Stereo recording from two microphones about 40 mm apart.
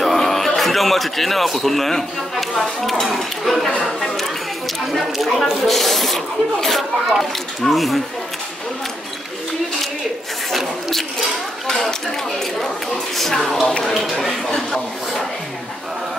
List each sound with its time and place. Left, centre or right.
0.0 s a man's voice: centre
4.0 s chatter: centre
5.1 s speech: centre
11.6 s speech: centre
13.7 s speech: centre